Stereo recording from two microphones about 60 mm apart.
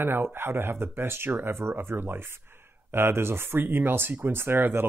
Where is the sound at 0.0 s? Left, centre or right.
Right.